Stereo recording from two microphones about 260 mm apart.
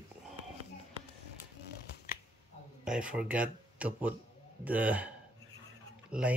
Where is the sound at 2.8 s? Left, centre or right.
Centre.